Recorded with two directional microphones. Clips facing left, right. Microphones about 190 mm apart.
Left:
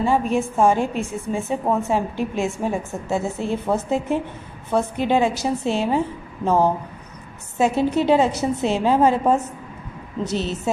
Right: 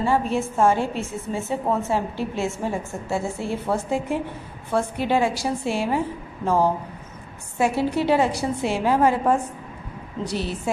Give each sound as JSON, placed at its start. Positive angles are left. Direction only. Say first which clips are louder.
{"t": 0.0, "sound": "a woman's voice", "louder": "left 2 dB", "side_deg": 15}